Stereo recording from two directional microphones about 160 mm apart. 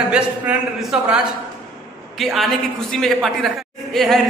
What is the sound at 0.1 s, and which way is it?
A man's voice, 5° right (ahead or behind).